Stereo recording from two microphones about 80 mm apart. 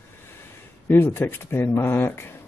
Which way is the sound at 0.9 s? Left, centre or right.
Left.